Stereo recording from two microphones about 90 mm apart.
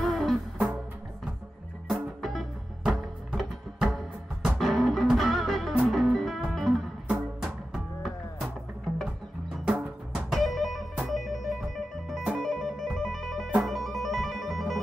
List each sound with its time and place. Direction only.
0.0 s music: centre (ahead or behind)
1.9 s music: centre (ahead or behind)